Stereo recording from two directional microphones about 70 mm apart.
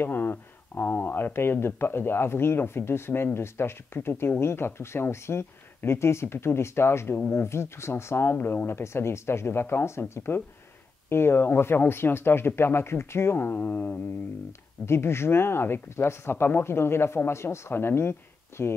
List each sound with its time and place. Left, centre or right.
0.0 s speech: left
14.9 s speech: left